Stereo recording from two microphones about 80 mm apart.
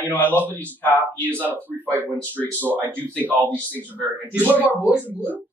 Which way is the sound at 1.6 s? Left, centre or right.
Right.